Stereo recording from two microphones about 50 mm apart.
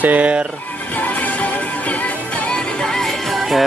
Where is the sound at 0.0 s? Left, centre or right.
Right.